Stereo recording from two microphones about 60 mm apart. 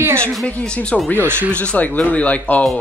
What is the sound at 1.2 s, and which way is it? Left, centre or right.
Speech, right.